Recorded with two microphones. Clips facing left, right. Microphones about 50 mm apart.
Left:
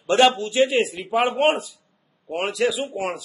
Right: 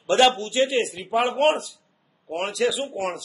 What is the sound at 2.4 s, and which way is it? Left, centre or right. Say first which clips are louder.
Speech: left 1 dB; centre.